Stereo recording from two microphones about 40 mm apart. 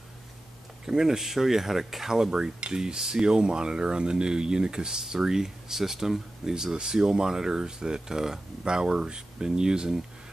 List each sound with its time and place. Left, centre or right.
0.8 s speech: centre